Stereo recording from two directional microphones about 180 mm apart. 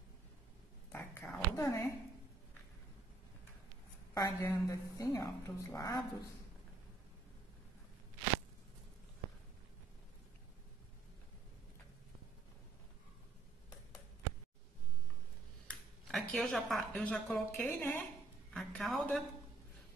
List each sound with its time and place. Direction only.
0.9 s a sound: 10° left (ahead or behind)
4.1 s a woman's voice: 20° left (ahead or behind)
15.7 s a woman's voice: centre (ahead or behind)